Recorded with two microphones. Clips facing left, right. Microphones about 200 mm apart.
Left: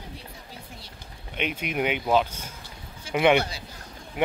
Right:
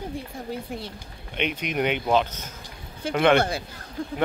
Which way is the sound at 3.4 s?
55° right (ahead or behind).